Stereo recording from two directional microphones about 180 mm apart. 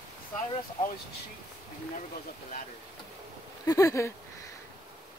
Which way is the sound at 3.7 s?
15° left (ahead or behind).